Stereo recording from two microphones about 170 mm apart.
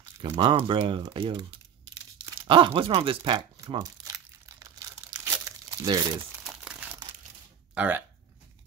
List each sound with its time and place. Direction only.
0.4 s speech: 30° right (ahead or behind)
2.4 s speech: 30° right (ahead or behind)
3.3 s crumpling: 20° right (ahead or behind)
6.4 s crumpling: 5° right (ahead or behind)
7.7 s speech: 10° right (ahead or behind)